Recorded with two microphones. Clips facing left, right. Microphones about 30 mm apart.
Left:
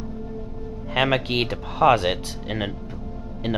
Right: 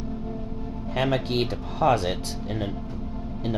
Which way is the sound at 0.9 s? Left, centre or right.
Left.